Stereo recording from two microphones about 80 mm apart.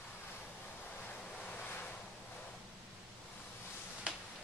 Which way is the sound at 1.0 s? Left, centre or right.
Centre.